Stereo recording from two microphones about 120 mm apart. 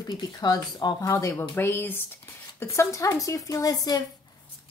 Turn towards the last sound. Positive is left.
turn(degrees=30)  # may be behind; listen again after turning